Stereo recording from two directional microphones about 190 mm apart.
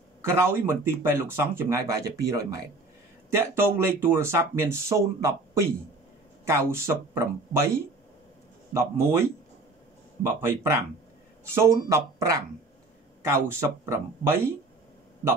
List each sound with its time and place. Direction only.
0.2 s speech: 15° right (ahead or behind)